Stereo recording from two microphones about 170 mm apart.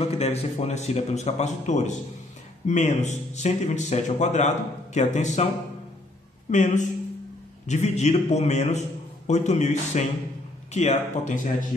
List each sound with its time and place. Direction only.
0.0 s a man's voice: 40° left (ahead or behind)
6.5 s a man's voice: 45° left (ahead or behind)